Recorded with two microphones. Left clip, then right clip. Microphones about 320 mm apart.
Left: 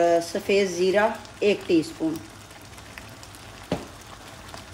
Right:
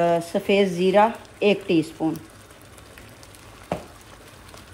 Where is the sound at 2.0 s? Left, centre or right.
Right.